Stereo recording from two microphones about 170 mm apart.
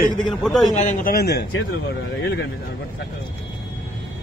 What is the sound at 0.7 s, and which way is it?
Speech, 50° left (ahead or behind).